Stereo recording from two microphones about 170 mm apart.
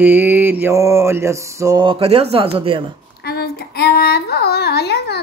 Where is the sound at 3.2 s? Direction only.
70° left (ahead or behind).